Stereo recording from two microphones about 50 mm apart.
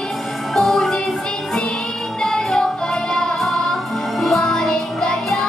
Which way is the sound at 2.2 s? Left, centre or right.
Centre.